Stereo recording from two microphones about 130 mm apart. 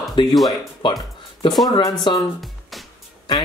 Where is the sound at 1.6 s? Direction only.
30° left (ahead or behind).